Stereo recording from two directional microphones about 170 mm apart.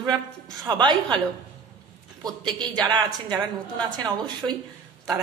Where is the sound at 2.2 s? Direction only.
25° right (ahead or behind).